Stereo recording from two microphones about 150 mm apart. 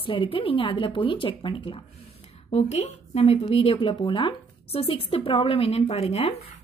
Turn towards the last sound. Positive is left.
turn(degrees=45)  # may be behind; listen again after turning